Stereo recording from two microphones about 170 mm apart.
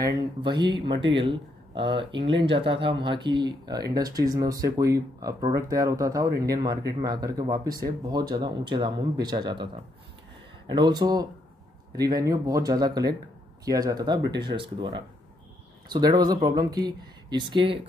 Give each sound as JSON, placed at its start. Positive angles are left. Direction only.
{"t": 0.0, "sound": "speech", "side_deg": -25}
{"t": 10.7, "sound": "speech", "side_deg": -25}